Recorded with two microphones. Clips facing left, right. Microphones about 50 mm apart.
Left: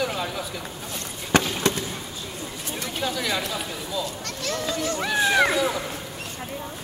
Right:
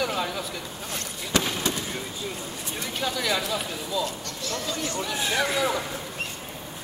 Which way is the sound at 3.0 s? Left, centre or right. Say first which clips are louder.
Even; centre.